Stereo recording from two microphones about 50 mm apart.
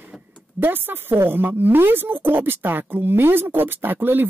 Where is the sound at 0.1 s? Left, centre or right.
Centre.